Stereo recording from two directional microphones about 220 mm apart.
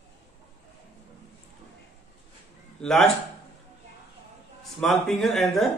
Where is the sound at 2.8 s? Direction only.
Centre (ahead or behind).